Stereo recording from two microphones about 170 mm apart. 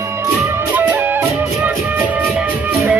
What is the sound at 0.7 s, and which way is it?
Music, 10° right (ahead or behind).